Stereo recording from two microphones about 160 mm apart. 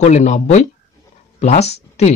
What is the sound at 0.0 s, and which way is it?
Speech, 45° left (ahead or behind).